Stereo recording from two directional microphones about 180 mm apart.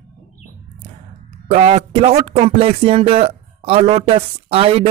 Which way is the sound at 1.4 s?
35° right (ahead or behind).